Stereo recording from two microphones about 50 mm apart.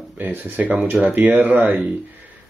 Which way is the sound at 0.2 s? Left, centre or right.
Right.